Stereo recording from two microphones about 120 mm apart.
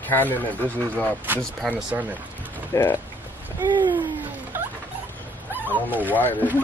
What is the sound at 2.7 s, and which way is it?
Speech, 20° left (ahead or behind).